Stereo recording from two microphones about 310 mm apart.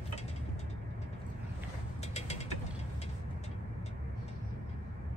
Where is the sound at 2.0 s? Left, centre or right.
Left.